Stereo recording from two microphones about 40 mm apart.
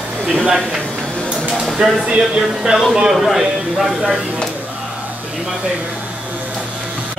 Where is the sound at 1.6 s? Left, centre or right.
Centre.